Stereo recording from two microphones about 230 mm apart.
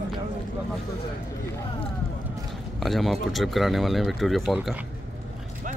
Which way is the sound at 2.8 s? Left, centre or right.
Centre.